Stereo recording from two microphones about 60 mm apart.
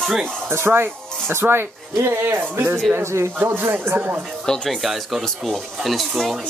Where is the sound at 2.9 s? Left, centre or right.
Right.